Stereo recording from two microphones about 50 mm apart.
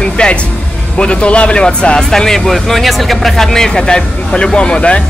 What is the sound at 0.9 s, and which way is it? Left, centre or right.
A man's voice, left.